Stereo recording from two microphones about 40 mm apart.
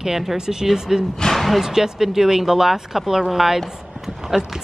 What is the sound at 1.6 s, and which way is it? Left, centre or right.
Speech, centre.